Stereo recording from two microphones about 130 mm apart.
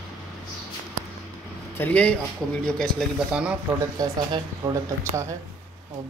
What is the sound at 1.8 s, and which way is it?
Speech, 10° left (ahead or behind).